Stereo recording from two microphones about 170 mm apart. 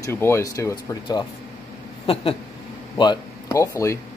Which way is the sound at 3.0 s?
20° left (ahead or behind).